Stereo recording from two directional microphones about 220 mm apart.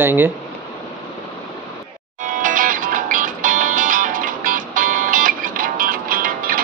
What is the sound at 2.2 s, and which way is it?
Music, 35° right (ahead or behind).